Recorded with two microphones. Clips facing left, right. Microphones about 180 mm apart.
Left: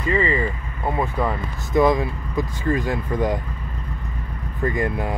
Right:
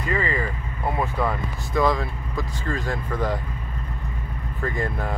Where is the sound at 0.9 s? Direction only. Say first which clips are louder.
Left 2 dB; 15° left (ahead or behind).